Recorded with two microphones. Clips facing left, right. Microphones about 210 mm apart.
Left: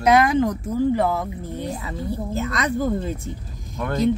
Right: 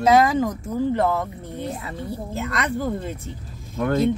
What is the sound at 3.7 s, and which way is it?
Speech, 30° right (ahead or behind).